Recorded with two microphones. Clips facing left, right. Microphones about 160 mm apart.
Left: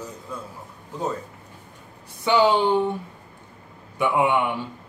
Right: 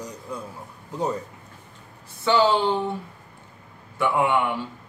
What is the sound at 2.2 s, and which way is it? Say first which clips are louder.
Speech: left 1 dB; 15° left (ahead or behind).